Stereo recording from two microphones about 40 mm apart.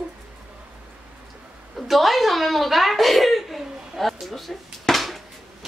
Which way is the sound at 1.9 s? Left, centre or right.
Centre.